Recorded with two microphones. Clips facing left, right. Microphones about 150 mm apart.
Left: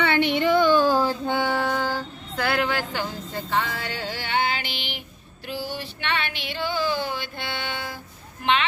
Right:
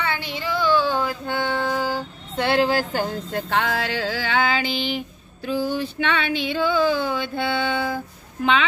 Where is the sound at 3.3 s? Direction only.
65° right (ahead or behind); by 4.2 s 90° right.